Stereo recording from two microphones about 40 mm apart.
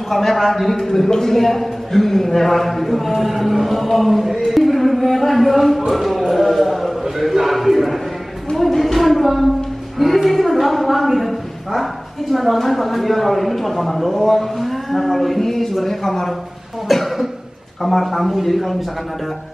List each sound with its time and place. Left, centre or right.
0.1 s a woman's voice: centre
16.8 s cough: centre
17.8 s a woman's voice: centre